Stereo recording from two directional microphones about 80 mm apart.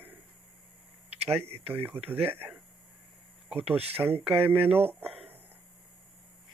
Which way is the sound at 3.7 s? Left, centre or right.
Right.